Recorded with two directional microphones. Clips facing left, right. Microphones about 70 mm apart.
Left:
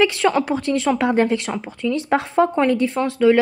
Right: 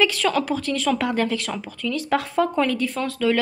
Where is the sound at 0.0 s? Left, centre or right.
Left.